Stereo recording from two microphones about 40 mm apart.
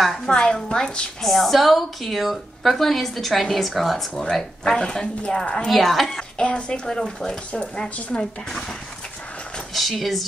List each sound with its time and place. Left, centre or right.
0.3 s a woman's voice: left
1.2 s a woman's voice: centre
4.2 s speech: centre
5.7 s a woman's voice: centre
6.3 s a woman's voice: left
9.8 s a woman's voice: centre